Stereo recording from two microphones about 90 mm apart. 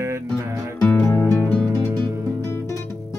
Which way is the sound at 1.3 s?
20° left (ahead or behind).